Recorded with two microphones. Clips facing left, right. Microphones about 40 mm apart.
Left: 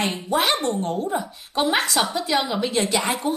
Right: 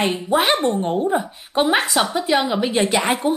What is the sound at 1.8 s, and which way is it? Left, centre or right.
Speech, centre.